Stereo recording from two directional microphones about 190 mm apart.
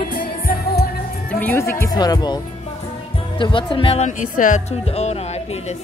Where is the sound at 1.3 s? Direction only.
10° left (ahead or behind); by 4.1 s 30° left (ahead or behind).